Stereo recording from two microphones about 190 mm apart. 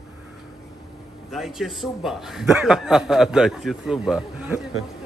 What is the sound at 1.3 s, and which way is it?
A man's voice, centre (ahead or behind).